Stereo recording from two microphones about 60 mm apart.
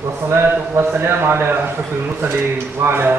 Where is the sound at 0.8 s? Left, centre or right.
Right.